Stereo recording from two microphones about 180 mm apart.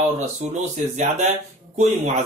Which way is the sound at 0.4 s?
45° right (ahead or behind).